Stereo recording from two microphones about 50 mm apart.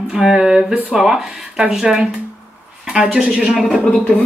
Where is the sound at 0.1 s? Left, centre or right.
Centre.